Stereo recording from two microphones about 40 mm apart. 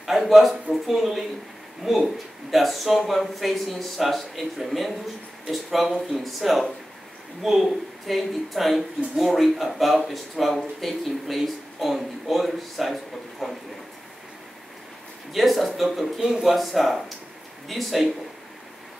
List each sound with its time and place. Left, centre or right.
0.0 s speech: centre
15.3 s speech: centre
16.2 s speech: centre
16.4 s speech: centre